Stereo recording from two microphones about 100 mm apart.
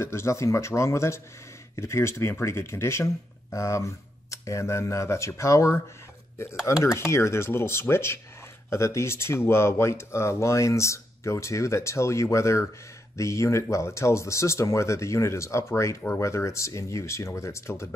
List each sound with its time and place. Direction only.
0.0 s speech: 25° left (ahead or behind)